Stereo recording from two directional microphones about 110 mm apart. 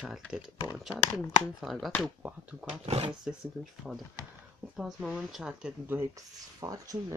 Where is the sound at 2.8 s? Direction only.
70° right (ahead or behind).